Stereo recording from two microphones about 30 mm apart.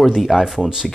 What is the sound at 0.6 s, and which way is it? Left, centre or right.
Speech, centre.